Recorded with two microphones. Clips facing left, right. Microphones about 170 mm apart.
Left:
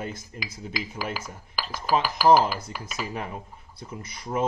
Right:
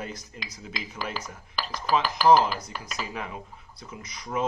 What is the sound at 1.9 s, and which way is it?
Speech, 5° left (ahead or behind).